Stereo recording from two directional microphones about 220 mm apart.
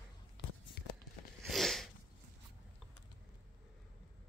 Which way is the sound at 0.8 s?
45° left (ahead or behind).